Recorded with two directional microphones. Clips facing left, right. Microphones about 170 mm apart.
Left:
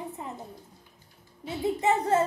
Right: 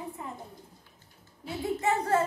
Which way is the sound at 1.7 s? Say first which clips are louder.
Left 2 dB; 20° left (ahead or behind).